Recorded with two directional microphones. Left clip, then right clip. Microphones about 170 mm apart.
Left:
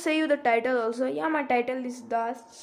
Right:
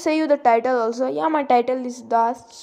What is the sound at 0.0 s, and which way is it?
A woman's voice, 15° right (ahead or behind).